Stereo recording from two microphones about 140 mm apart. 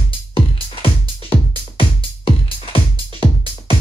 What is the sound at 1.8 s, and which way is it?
Music, 40° left (ahead or behind).